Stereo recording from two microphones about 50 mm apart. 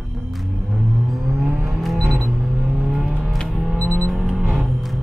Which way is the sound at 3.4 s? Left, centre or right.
Centre.